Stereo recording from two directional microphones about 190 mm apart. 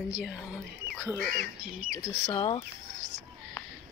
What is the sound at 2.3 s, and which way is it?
Speech, 25° left (ahead or behind).